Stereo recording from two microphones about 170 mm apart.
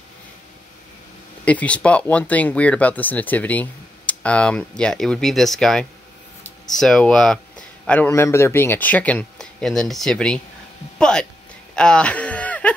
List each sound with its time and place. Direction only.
1.4 s a man's voice: 10° left (ahead or behind)
11.7 s wail: 5° left (ahead or behind)